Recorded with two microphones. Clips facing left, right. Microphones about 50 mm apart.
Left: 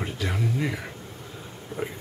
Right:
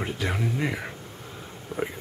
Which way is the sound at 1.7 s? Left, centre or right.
Left.